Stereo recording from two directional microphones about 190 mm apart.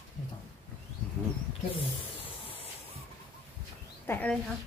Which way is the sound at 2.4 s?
30° left (ahead or behind).